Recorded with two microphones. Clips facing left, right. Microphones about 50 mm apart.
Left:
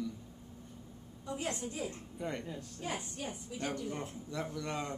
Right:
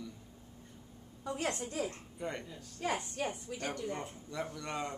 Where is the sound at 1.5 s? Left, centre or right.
Right.